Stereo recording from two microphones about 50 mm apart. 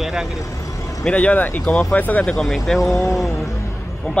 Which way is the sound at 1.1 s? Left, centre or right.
Left.